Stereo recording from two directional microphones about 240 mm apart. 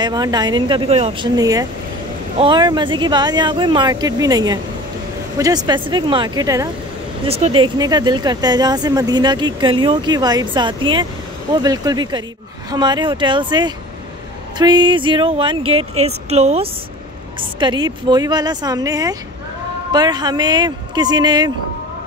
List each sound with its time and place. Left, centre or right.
0.0 s speech: centre
7.2 s speech: right